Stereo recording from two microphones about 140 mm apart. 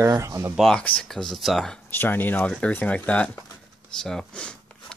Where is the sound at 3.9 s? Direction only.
Centre (ahead or behind).